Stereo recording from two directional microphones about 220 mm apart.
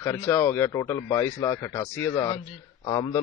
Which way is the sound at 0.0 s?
15° left (ahead or behind).